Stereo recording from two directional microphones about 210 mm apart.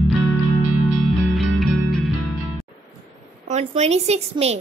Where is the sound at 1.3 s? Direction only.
Centre (ahead or behind).